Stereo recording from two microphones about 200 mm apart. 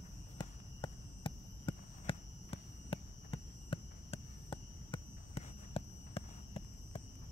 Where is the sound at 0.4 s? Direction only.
25° left (ahead or behind).